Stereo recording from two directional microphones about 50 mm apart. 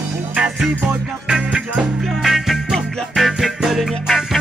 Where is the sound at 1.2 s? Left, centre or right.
Centre.